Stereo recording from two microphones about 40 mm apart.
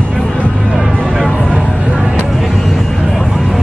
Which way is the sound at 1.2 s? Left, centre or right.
Left.